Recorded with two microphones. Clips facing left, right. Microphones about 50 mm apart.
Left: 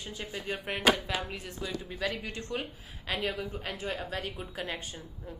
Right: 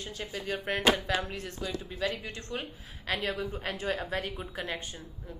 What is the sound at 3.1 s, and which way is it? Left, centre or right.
A woman's voice, centre.